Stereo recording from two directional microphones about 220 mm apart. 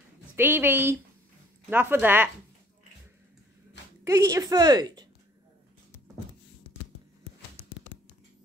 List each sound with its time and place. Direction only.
0.4 s a woman's voice: 10° right (ahead or behind)
4.0 s a woman's voice: 15° right (ahead or behind)